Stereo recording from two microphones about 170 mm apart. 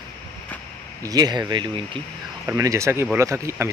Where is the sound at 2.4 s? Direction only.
15° right (ahead or behind).